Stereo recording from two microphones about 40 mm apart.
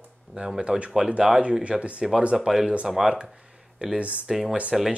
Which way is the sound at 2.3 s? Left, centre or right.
Centre.